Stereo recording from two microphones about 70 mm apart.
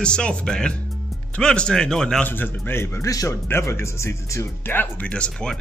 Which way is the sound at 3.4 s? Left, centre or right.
Left.